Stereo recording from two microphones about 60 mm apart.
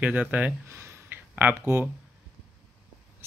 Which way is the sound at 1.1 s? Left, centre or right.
Right.